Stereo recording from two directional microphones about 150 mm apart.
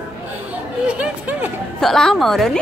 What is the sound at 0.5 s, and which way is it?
Chatter, 10° right (ahead or behind).